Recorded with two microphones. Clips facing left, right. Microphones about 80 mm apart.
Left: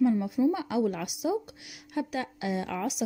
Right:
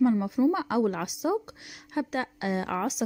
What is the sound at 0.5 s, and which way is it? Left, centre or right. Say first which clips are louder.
A woman's voice: right 2 dB; right.